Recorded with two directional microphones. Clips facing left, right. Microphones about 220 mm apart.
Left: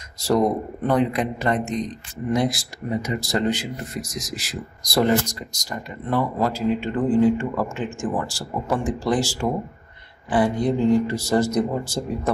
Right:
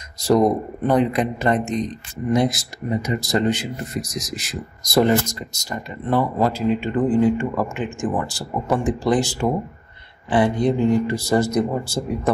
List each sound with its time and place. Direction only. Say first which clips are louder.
0.3 s speech: right 3 dB; 15° right (ahead or behind)